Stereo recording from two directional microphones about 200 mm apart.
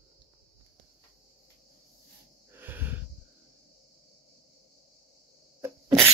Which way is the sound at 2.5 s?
10° right (ahead or behind).